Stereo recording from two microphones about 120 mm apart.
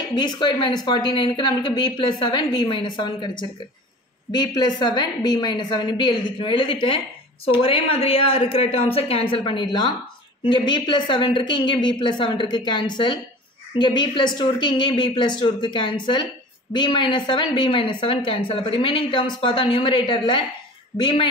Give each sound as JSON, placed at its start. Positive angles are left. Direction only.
{"t": 0.1, "sound": "speech", "side_deg": 40}